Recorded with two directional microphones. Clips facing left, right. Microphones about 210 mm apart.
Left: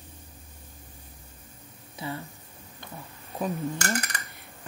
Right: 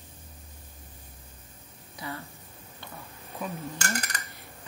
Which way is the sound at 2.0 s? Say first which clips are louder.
Left 3 dB; 25° left (ahead or behind).